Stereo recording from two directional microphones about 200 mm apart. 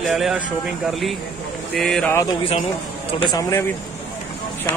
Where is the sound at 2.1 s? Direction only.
15° left (ahead or behind).